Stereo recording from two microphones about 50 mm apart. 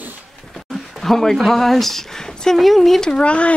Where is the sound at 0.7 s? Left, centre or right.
Centre.